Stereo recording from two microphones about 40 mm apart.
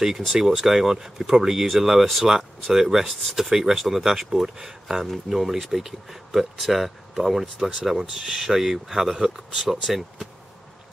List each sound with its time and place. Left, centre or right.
0.2 s speech: centre